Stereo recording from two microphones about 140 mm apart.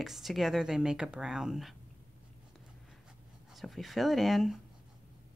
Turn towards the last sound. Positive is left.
turn(degrees=0)  # may be behind; listen again after turning